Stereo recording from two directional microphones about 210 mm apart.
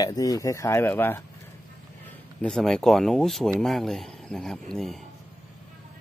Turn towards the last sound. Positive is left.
turn(degrees=0)  # may be behind; listen again after turning